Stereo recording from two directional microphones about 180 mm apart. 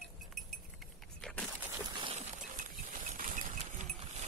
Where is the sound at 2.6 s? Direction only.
45° right (ahead or behind).